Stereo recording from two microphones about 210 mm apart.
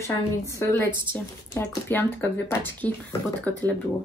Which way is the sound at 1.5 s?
10° left (ahead or behind).